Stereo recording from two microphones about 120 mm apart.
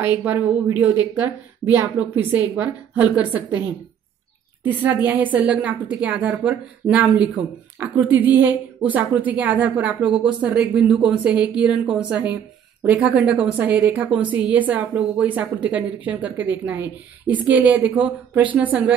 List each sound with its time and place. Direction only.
0.0 s a woman's voice: 15° right (ahead or behind)
4.6 s a woman's voice: 15° right (ahead or behind)